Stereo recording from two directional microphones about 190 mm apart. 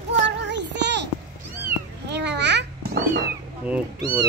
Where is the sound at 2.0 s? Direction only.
65° right (ahead or behind).